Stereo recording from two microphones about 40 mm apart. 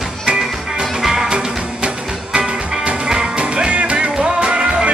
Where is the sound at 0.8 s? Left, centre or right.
Centre.